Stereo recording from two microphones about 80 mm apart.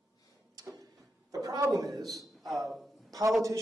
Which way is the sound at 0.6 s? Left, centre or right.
Right.